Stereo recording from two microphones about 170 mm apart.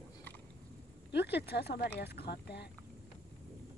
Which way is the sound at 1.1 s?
75° left (ahead or behind).